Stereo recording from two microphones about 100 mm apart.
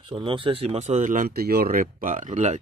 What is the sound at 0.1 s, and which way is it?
Speech, 60° right (ahead or behind).